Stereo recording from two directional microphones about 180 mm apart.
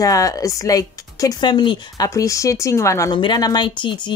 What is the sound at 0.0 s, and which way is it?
Speech, 20° left (ahead or behind).